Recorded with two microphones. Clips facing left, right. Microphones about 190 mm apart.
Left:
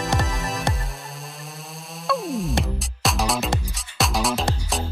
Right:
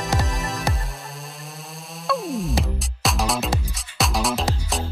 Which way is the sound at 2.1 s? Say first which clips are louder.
Even; centre (ahead or behind).